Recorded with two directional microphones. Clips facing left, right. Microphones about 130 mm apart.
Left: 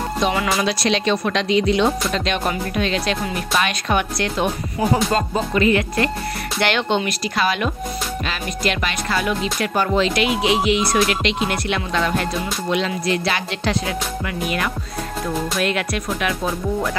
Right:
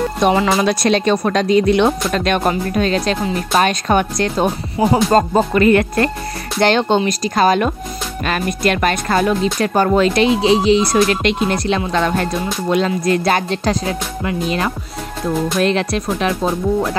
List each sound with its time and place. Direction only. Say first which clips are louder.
0.3 s music: right 8 dB; 30° right (ahead or behind)
0.7 s speech: right 5 dB; 50° right (ahead or behind)
6.6 s music: right 6 dB; 40° right (ahead or behind)
7.1 s speech: right 7 dB; 40° right (ahead or behind)
10.2 s music: right 5 dB; 30° right (ahead or behind)